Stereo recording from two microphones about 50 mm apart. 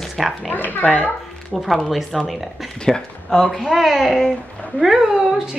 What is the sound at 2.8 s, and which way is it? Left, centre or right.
A woman's voice, centre.